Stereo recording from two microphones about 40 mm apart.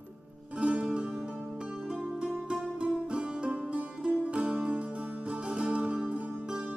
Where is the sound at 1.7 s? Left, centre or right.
Centre.